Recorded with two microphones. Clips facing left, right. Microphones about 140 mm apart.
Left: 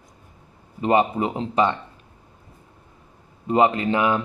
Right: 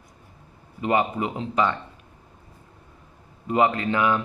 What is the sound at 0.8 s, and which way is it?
Speech, 30° left (ahead or behind).